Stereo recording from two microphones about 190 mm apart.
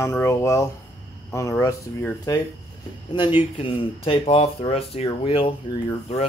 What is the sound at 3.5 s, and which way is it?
Speech, 30° left (ahead or behind).